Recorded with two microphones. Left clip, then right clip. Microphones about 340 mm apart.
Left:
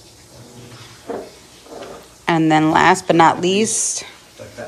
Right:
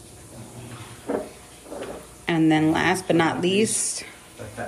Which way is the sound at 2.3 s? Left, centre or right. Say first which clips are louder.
Left 6 dB; centre.